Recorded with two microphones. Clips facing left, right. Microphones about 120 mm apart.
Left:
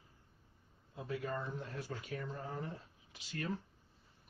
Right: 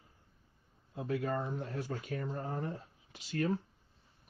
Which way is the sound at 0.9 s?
55° right (ahead or behind).